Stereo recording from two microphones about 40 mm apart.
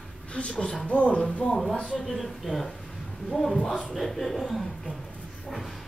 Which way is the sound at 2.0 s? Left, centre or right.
Centre.